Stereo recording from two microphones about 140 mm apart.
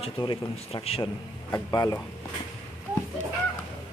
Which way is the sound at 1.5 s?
25° left (ahead or behind).